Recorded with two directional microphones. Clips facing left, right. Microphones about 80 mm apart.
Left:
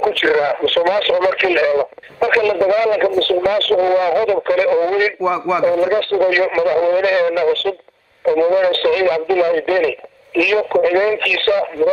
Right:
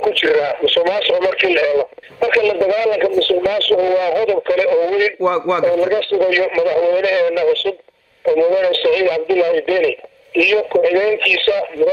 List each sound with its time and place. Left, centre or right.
0.0 s radio: left
2.2 s speech: left
5.2 s a man's voice: centre
5.8 s speech: left